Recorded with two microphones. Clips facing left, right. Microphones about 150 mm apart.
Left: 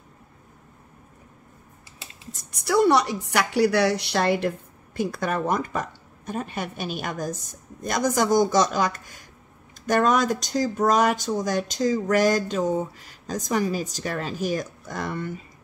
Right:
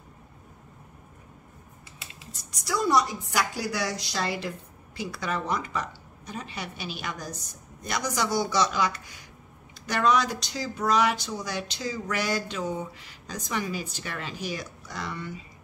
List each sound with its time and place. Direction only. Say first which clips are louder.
2.5 s a woman's voice: left 5 dB; 65° left (ahead or behind)